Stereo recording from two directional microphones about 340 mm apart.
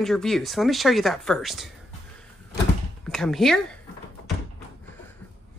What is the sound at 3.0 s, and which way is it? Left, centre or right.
Speech, centre.